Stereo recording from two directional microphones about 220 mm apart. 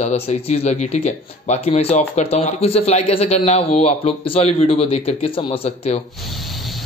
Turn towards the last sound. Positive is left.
turn(degrees=25)  # may be behind; listen again after turning